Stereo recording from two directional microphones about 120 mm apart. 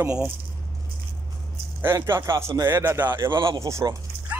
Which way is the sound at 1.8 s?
20° right (ahead or behind).